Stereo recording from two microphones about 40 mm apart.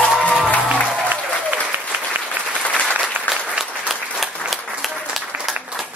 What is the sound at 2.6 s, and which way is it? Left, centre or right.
Applause, left.